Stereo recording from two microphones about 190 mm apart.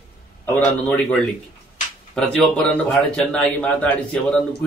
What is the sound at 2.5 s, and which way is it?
A man's voice, 5° left (ahead or behind).